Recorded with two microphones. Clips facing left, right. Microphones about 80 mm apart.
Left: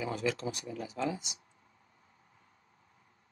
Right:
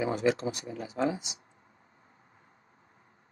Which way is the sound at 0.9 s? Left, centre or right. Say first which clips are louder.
Right 5 dB; right.